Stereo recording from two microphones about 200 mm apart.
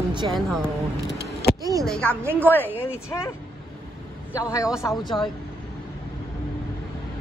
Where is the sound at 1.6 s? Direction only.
15° right (ahead or behind).